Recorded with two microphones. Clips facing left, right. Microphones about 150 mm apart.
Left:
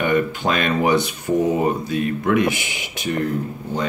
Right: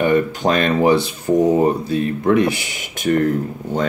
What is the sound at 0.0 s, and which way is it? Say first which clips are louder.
Speech: right 3 dB; 35° right (ahead or behind).